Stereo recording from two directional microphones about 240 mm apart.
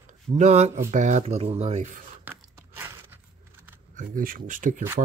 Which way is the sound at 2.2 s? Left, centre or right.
Centre.